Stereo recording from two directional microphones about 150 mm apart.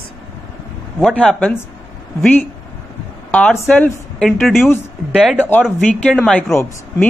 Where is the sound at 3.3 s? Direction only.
10° left (ahead or behind); by 5.4 s 5° right (ahead or behind).